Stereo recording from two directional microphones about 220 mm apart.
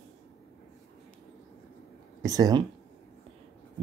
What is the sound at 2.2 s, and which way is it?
Speech, 15° right (ahead or behind).